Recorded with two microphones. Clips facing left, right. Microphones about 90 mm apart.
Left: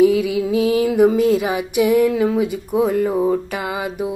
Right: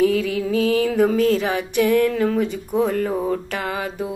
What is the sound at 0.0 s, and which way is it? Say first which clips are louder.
Mantra: left 4 dB; 15° left (ahead or behind).